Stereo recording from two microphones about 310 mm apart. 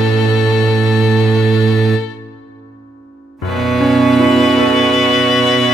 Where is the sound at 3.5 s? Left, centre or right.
Centre.